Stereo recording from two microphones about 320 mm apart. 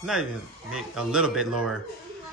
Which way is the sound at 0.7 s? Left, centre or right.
Centre.